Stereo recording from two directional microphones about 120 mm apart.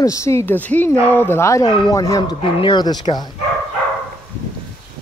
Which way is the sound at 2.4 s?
45° left (ahead or behind).